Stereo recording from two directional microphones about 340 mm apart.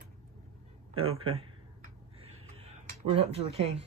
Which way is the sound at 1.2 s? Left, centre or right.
Centre.